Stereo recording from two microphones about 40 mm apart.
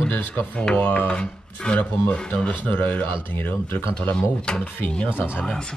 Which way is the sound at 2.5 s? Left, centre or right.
Left.